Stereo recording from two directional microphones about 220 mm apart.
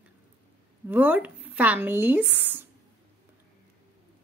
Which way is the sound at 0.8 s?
5° right (ahead or behind).